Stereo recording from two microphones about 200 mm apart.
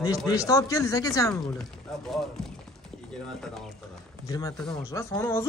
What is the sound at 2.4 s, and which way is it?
Speech, centre (ahead or behind).